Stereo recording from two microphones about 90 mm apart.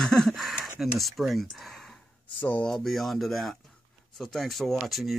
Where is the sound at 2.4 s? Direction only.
20° left (ahead or behind).